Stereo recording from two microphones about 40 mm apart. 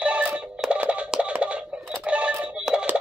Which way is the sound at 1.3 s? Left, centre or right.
Right.